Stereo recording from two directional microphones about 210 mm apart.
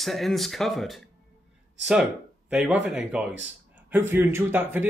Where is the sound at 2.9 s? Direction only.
5° right (ahead or behind).